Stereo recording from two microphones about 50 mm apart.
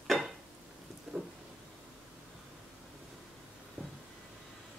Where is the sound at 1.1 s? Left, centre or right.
Centre.